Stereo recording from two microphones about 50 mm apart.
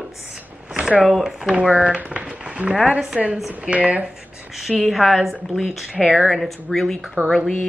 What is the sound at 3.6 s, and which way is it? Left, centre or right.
Speech, right.